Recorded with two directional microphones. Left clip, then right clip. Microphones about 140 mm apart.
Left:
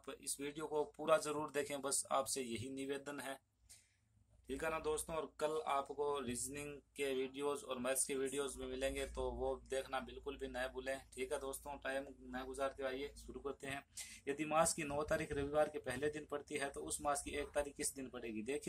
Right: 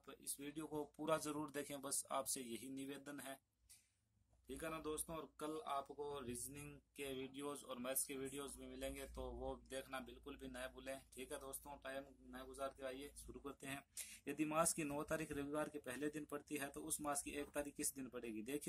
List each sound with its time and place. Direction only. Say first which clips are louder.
0.4 s speech: left 8 dB; 20° right (ahead or behind)
4.5 s speech: left 8 dB; 20° right (ahead or behind); by 18.7 s 35° right (ahead or behind)